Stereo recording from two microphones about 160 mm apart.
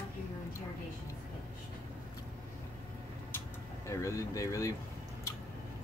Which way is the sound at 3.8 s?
20° left (ahead or behind).